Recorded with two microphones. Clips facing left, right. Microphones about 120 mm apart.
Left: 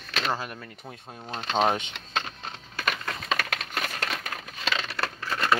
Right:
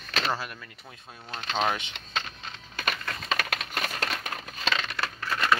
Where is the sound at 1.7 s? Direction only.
35° left (ahead or behind).